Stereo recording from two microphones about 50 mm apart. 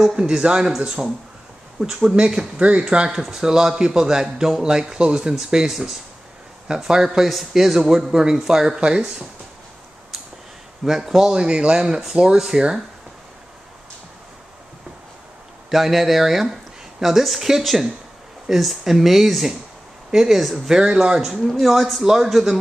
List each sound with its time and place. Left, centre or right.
0.0 s a man's voice: centre
10.9 s a man's voice: centre
15.7 s a man's voice: centre